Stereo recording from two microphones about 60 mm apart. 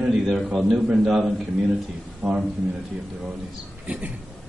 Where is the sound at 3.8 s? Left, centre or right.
Right.